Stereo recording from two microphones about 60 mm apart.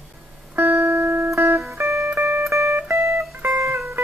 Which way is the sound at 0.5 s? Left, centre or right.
Right.